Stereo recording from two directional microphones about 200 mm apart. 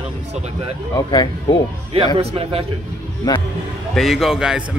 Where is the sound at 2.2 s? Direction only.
30° right (ahead or behind).